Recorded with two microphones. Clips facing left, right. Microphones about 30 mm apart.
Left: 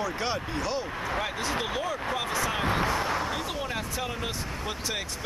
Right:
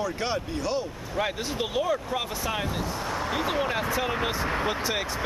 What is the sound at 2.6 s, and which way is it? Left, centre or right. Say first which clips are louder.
Speech: left 5 dB; left.